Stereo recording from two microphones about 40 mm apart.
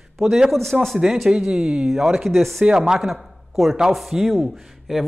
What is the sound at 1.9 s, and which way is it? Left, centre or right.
Speech, centre.